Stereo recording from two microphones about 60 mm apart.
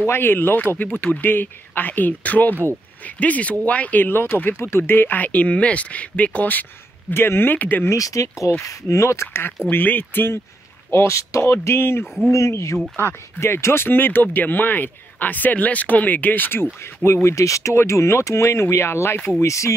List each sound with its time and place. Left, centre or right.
0.0 s speech: left
7.1 s speech: left
7.9 s speech: left
9.7 s speech: left
10.9 s speech: left
12.3 s speech: left
12.9 s speech: left
16.8 s speech: left
19.4 s speech: left